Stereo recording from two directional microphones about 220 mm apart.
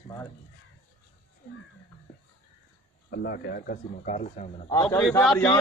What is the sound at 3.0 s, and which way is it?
Speech, 45° left (ahead or behind).